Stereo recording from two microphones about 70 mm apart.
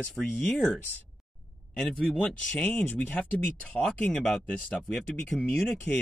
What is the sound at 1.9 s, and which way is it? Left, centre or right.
Speech, centre.